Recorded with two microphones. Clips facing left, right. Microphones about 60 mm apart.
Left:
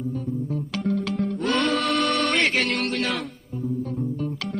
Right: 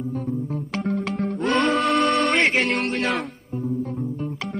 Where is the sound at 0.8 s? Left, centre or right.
Right.